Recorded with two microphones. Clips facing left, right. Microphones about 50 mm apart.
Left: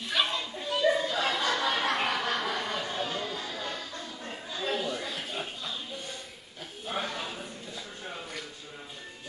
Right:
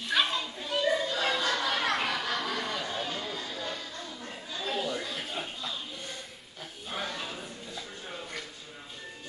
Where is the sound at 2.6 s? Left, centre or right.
Centre.